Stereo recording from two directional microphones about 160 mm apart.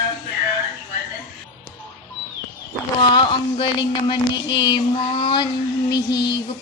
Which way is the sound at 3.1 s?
30° left (ahead or behind).